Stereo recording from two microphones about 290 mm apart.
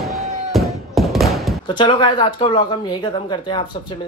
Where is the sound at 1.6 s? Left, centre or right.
Centre.